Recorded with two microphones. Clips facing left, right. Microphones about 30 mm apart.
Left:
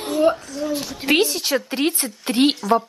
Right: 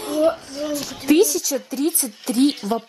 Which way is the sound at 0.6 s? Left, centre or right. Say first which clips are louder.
Left 1 dB; right.